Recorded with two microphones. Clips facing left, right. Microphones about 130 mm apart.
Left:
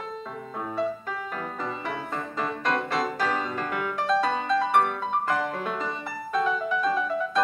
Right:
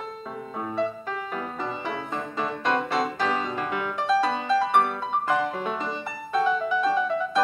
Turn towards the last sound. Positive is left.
turn(degrees=0)  # may be behind; listen again after turning